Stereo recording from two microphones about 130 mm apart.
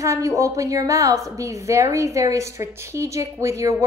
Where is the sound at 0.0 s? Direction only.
25° right (ahead or behind).